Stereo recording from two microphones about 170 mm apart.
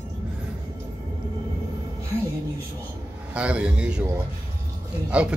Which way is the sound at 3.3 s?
5° right (ahead or behind).